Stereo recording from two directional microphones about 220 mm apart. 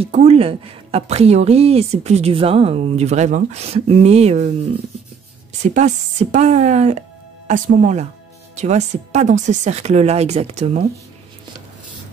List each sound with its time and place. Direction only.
0.0 s speech: 30° right (ahead or behind)
5.6 s speech: 35° right (ahead or behind)